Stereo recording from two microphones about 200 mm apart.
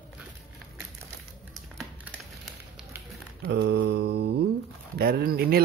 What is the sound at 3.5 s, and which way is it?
Mantra, 65° right (ahead or behind).